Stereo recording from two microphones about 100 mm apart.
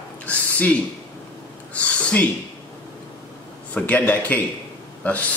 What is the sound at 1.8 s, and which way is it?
Speech, 15° left (ahead or behind).